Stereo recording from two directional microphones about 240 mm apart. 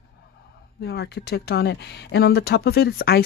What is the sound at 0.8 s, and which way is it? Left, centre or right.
Speech, left.